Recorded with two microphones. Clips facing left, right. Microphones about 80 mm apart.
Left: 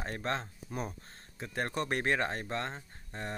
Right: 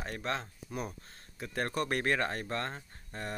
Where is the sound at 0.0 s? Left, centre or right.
Left.